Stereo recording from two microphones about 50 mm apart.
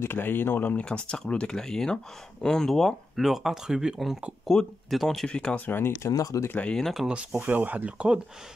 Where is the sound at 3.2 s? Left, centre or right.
Centre.